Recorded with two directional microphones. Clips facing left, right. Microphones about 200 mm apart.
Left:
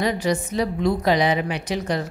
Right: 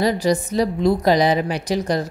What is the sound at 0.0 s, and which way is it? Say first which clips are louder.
A woman's voice: right 4 dB; 35° right (ahead or behind).